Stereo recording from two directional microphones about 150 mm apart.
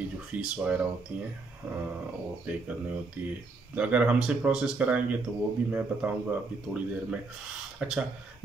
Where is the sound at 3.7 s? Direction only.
10° right (ahead or behind).